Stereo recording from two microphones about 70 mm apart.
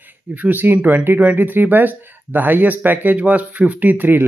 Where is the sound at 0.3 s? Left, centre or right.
Right.